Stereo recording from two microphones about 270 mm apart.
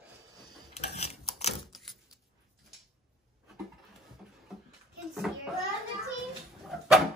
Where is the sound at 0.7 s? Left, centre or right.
Left.